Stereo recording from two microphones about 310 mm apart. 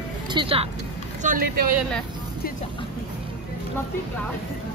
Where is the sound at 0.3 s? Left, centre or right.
Centre.